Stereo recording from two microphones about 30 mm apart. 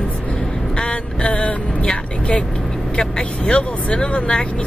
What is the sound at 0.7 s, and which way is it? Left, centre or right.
Speech, left.